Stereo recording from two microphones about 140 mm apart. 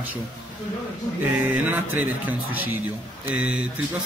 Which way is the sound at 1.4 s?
15° right (ahead or behind).